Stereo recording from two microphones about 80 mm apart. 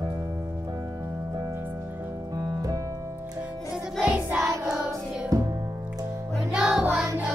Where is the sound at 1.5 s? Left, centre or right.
Right.